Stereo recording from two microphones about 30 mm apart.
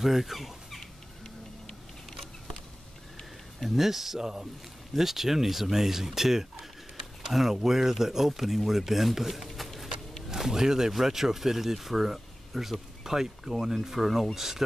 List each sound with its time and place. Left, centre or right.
0.0 s speech: centre
3.5 s speech: centre
3.8 s speech: centre
9.3 s a sound: centre
10.3 s speech: centre